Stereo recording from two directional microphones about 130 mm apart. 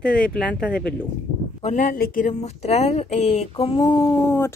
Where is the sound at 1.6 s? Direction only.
80° left; by 4.1 s 35° left (ahead or behind).